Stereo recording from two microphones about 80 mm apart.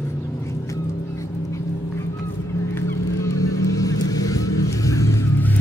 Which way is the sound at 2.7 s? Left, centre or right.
Left.